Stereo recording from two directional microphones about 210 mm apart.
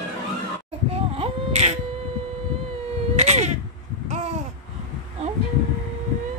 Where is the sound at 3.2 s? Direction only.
30° right (ahead or behind).